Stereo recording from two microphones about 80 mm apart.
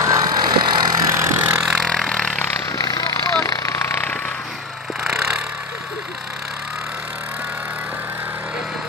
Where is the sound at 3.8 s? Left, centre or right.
Left.